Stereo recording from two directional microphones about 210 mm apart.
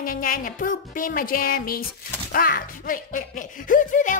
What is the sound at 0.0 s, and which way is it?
Speech, 40° left (ahead or behind).